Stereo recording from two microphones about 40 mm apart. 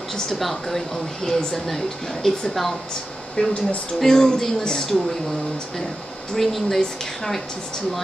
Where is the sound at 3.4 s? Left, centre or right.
Left.